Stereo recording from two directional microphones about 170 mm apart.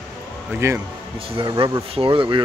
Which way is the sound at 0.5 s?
15° right (ahead or behind).